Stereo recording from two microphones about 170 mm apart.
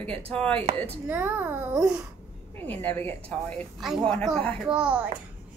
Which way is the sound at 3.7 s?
Centre (ahead or behind).